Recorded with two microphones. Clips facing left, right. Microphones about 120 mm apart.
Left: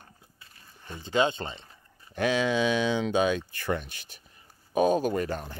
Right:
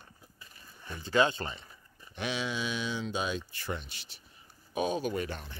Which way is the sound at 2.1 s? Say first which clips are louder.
Left 9 dB; 50° left (ahead or behind).